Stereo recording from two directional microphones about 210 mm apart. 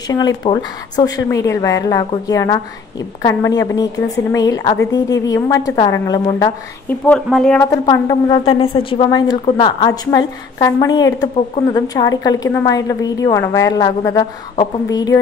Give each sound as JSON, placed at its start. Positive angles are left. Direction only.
{"t": 0.1, "sound": "speech", "side_deg": 20}
{"t": 7.1, "sound": "speech", "side_deg": 0}
{"t": 7.7, "sound": "speech", "side_deg": 15}